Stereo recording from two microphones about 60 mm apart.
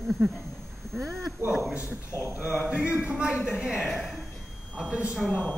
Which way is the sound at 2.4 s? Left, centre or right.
Right.